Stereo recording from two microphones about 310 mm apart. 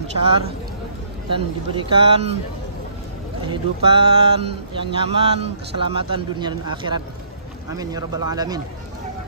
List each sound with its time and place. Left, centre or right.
1.3 s speech: centre
3.4 s speech: centre